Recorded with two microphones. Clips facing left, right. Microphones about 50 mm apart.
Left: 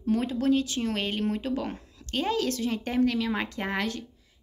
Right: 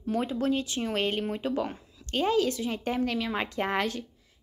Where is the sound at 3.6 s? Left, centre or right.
Right.